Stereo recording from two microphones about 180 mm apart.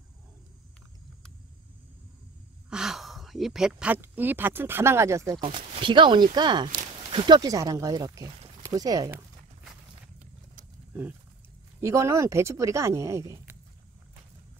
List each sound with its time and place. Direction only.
2.7 s speech: centre (ahead or behind)
5.4 s speech: 30° right (ahead or behind)
11.8 s speech: 15° right (ahead or behind)